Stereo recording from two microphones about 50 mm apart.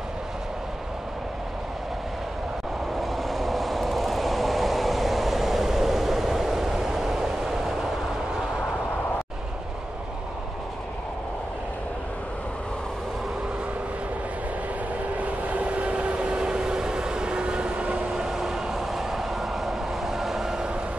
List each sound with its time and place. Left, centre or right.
3.0 s vehicle: centre
15.1 s train: right
18.1 s vehicle: centre